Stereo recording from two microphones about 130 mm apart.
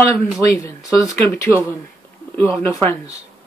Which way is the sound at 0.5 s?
25° left (ahead or behind).